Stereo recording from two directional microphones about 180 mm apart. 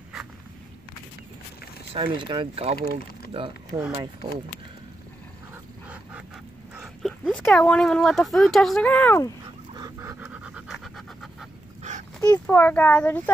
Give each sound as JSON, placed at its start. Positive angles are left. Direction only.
{"t": 2.0, "sound": "speech", "side_deg": -25}
{"t": 3.9, "sound": "speech", "side_deg": -25}
{"t": 6.8, "sound": "speech", "side_deg": 0}
{"t": 9.8, "sound": "pant", "side_deg": -20}
{"t": 12.2, "sound": "a child's voice", "side_deg": 15}